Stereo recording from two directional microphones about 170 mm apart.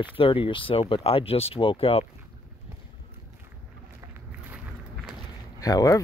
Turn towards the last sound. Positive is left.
turn(degrees=20)  # may be behind; listen again after turning